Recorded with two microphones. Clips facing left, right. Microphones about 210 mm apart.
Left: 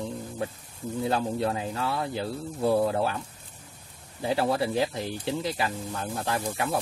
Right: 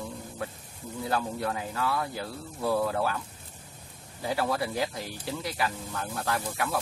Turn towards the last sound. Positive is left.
turn(degrees=25)  # may be behind; listen again after turning